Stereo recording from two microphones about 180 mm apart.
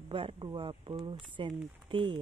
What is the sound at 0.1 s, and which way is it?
Speech, 30° right (ahead or behind).